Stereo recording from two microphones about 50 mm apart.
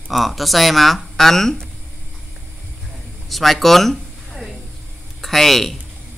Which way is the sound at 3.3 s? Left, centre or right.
Centre.